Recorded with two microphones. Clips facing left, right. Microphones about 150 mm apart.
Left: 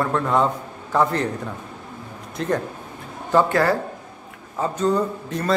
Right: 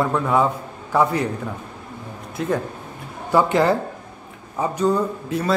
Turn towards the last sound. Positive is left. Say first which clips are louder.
# right 2 dB
turn(degrees=-5)  # may be behind; listen again after turning